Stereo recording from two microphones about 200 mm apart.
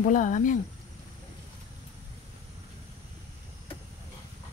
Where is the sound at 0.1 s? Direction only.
40° left (ahead or behind).